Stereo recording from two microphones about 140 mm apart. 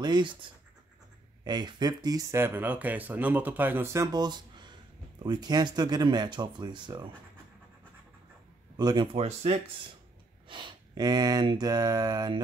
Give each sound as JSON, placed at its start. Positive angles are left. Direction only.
{"t": 0.0, "sound": "speech", "side_deg": -35}
{"t": 8.7, "sound": "speech", "side_deg": -30}
{"t": 10.5, "sound": "mantra", "side_deg": -35}